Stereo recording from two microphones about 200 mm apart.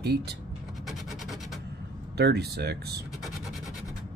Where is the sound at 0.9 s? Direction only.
Centre (ahead or behind).